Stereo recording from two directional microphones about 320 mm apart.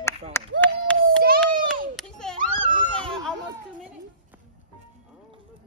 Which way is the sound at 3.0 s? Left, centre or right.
Centre.